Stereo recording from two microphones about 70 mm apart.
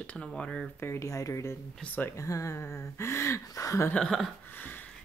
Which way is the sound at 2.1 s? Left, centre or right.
Left.